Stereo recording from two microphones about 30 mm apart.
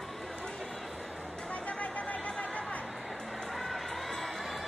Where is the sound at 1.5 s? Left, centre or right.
Left.